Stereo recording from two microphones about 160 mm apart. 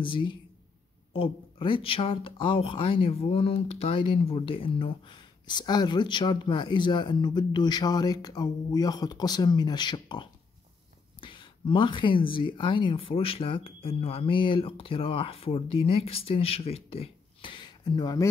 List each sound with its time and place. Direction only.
0.0 s speech: 30° left (ahead or behind)